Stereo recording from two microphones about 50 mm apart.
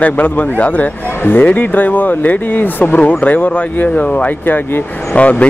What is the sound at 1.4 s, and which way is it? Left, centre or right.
Speech, left.